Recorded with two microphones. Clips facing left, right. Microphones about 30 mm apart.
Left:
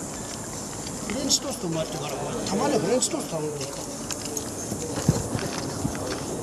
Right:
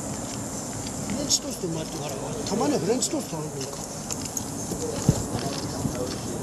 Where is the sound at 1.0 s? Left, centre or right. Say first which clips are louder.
Left 2 dB; centre.